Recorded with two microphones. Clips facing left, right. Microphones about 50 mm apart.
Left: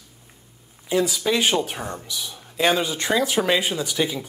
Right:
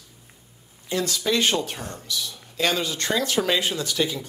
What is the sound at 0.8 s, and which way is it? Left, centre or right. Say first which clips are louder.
Speech: left 3 dB; centre.